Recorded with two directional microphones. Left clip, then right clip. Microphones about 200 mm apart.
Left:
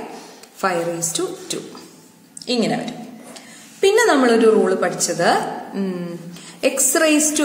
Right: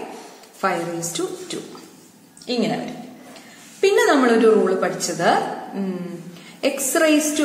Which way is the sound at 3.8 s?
10° left (ahead or behind).